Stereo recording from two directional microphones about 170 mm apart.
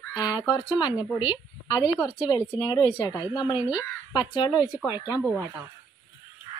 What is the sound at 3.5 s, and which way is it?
Speech, 10° right (ahead or behind).